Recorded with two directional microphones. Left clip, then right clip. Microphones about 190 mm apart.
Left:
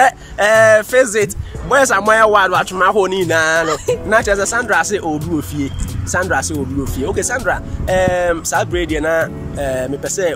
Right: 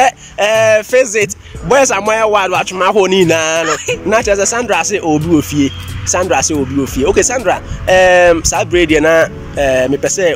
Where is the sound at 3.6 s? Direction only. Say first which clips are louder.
Right 2 dB; 25° left (ahead or behind).